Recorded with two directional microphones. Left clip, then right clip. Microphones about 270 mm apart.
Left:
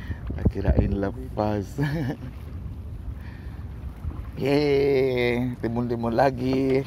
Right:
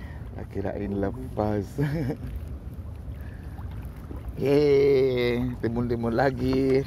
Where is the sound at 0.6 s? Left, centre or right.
Centre.